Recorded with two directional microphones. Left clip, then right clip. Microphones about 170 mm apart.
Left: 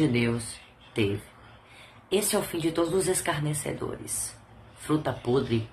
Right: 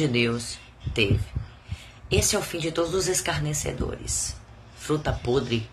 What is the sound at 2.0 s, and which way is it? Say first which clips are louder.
Speech: right 2 dB; 5° left (ahead or behind).